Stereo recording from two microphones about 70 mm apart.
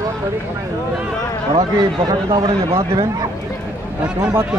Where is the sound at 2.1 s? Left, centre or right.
Right.